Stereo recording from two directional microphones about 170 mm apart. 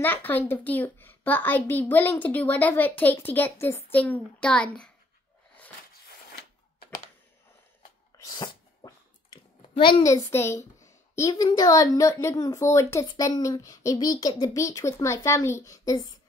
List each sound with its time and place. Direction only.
0.0 s a child's voice: 10° left (ahead or behind)
8.2 s a sound: 20° left (ahead or behind)
10.0 s a child's voice: 15° left (ahead or behind)